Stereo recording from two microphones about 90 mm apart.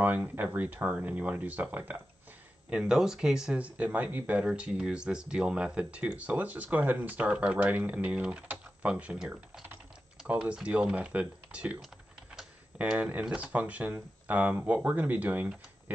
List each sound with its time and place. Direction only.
0.0 s speech: 20° right (ahead or behind)
2.7 s speech: 5° right (ahead or behind)
12.3 s a sound: 15° right (ahead or behind)
13.2 s speech: 10° right (ahead or behind)